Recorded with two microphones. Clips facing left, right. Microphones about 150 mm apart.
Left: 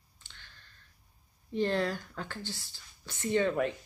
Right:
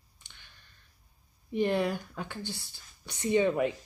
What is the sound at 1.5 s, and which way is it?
Speech, 15° right (ahead or behind).